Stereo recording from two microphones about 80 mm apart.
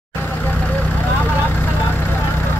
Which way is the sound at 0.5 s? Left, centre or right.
Centre.